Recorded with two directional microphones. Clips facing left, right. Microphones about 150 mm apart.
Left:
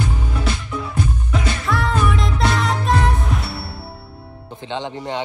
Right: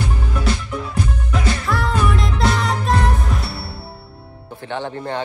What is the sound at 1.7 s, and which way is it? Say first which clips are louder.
Music: left 2 dB; centre (ahead or behind).